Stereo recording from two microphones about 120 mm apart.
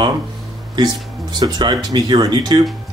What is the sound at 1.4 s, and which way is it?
Speech, 35° right (ahead or behind).